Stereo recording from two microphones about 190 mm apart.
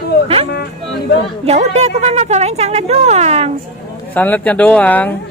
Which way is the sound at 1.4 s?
35° right (ahead or behind).